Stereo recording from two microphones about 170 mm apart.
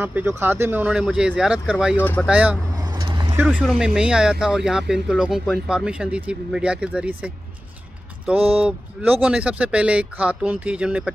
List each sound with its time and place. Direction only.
0.0 s speech: 10° right (ahead or behind)
2.0 s speech: 10° left (ahead or behind)
2.2 s speech: 5° right (ahead or behind)
3.0 s vehicle: 25° right (ahead or behind)
3.3 s speech: 5° right (ahead or behind)